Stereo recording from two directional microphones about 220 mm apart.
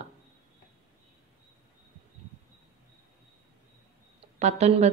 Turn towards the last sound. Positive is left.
turn(degrees=-30)  # may be behind; listen again after turning